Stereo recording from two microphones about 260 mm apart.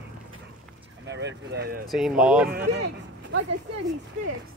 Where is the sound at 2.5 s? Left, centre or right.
Right.